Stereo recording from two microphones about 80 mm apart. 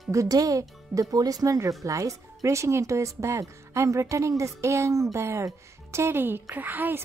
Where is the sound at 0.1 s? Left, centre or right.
Right.